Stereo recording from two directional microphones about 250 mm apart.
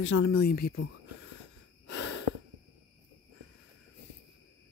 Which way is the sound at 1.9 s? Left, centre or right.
Left.